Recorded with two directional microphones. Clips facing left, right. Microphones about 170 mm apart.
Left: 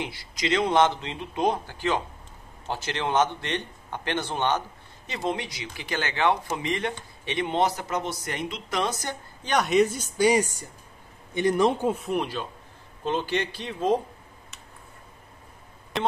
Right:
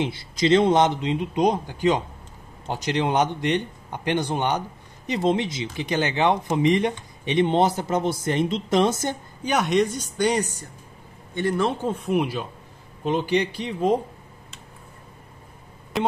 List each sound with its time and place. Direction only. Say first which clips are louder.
0.0 s a man's voice: right 8 dB; 25° right (ahead or behind)
9.4 s speech: even; 5° right (ahead or behind); by 12.0 s 15° left (ahead or behind)
12.0 s speech: right 4 dB; 5° right (ahead or behind)